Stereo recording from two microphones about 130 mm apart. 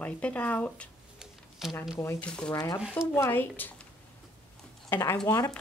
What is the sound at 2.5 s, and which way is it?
Speech, 30° left (ahead or behind).